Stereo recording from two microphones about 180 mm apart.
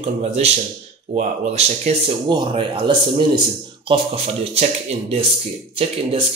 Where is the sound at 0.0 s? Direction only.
35° right (ahead or behind).